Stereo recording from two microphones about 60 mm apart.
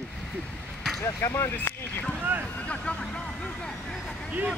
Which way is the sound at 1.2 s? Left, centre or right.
Left.